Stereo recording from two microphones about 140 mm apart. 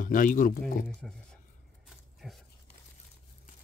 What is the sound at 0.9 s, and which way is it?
Speech, 5° left (ahead or behind).